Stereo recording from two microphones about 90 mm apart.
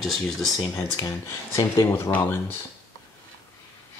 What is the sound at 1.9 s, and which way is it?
Speech, 20° left (ahead or behind).